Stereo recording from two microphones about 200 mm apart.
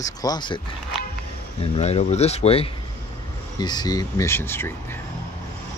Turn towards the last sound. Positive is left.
turn(degrees=10)  # may be behind; listen again after turning